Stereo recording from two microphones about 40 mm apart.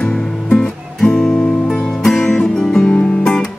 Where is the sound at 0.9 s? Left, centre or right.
Centre.